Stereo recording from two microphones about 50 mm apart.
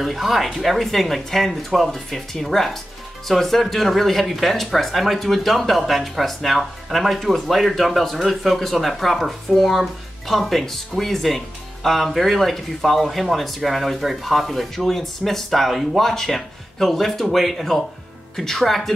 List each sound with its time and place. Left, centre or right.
0.0 s speech: centre